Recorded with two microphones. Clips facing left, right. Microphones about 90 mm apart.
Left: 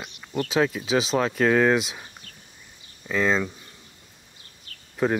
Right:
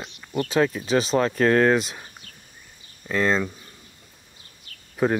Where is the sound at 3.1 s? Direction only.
Centre (ahead or behind).